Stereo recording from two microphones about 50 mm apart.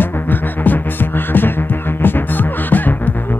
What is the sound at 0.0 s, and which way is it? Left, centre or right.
Music, left.